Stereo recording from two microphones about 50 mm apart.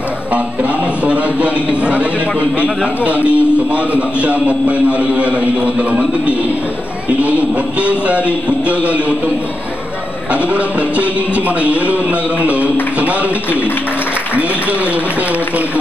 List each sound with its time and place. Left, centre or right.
1.0 s a sound: right
2.6 s a man's voice: right
7.2 s a man's voice: right
10.3 s a man's voice: right